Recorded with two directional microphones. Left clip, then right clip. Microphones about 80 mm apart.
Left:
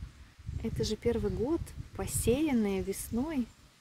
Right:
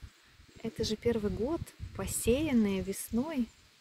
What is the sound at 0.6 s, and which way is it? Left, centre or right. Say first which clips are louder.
Speech: even; left.